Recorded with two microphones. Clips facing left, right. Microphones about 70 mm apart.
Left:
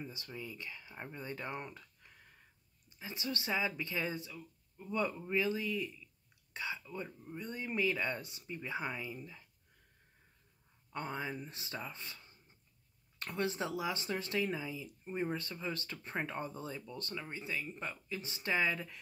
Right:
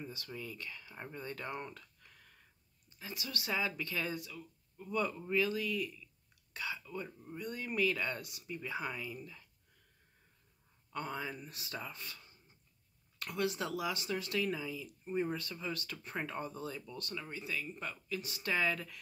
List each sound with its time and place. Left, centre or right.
0.0 s speech: left
10.9 s speech: left